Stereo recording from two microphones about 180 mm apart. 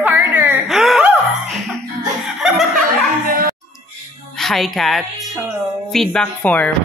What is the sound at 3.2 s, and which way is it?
Music, 50° right (ahead or behind).